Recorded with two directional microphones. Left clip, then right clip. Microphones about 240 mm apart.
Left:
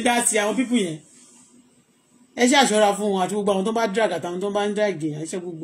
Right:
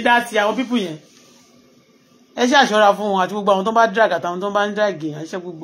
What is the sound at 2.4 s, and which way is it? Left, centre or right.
Speech, right.